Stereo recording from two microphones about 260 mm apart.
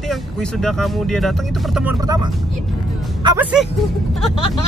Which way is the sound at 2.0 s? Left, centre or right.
Centre.